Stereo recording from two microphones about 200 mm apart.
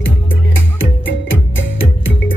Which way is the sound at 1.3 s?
70° left (ahead or behind).